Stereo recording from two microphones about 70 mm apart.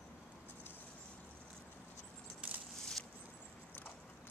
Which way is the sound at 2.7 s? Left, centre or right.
Centre.